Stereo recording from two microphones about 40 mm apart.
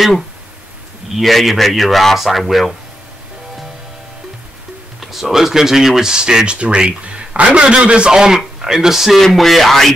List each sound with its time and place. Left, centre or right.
1.1 s a man's voice: centre
5.0 s a man's voice: centre; by 8.1 s right
8.1 s speech: centre
9.2 s a man's voice: centre